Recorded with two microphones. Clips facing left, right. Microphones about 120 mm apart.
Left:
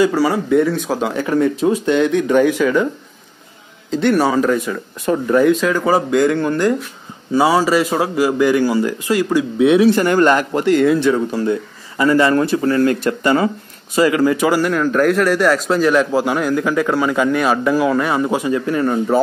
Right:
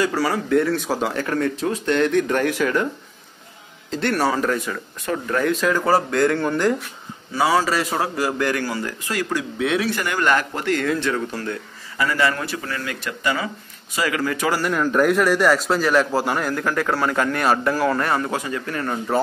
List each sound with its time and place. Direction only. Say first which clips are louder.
0.0 s a man's voice: left 6 dB; 5° left (ahead or behind)
1.2 s a man's voice: left 7 dB; 10° left (ahead or behind)
3.9 s a man's voice: left 6 dB; centre (ahead or behind)
5.0 s speech: left 8 dB; 15° left (ahead or behind)
5.5 s a man's voice: left 5 dB; centre (ahead or behind)
5.9 s a man's voice: left 4 dB; 10° left (ahead or behind)
7.3 s speech: left 5 dB; 20° left (ahead or behind)
10.3 s speech: left 6 dB; 20° left (ahead or behind)
12.0 s speech: left 8 dB; 25° left (ahead or behind)
13.9 s speech: left 9 dB; 25° left (ahead or behind)
14.3 s speech: left 7 dB; 10° left (ahead or behind)
14.6 s a man's voice: left 4 dB; 5° right (ahead or behind); by 18.9 s 15° left (ahead or behind)